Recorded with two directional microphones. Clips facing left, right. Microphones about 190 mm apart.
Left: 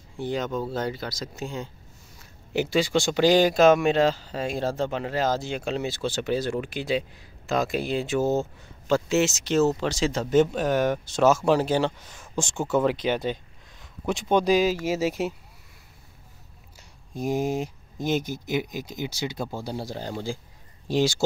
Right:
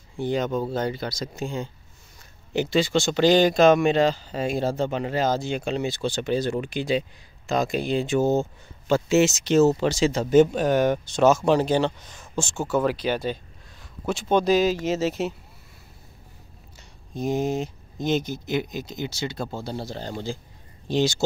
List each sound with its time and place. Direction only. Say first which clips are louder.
0.2 s speech: right 3 dB; centre (ahead or behind)
17.1 s speech: right 1 dB; 10° left (ahead or behind)